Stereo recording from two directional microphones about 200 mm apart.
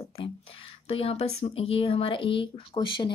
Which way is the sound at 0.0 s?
25° left (ahead or behind).